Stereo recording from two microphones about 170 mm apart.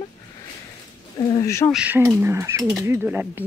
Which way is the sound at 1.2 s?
20° left (ahead or behind).